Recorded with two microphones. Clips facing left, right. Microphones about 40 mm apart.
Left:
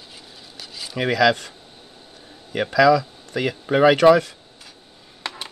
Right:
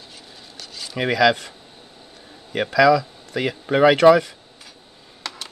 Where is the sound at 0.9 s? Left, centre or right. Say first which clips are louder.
Even; centre.